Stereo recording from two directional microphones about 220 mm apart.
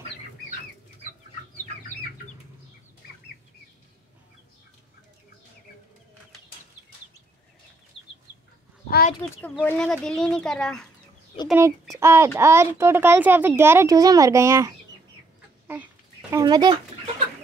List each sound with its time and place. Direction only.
8.0 s chicken: 25° left (ahead or behind)
9.2 s speech: 5° left (ahead or behind); by 14.7 s 15° right (ahead or behind)
15.6 s babbling: 10° right (ahead or behind)